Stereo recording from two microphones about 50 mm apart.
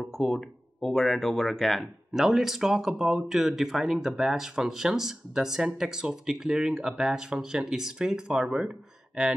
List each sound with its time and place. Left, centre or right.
0.2 s speech: centre
2.1 s speech: centre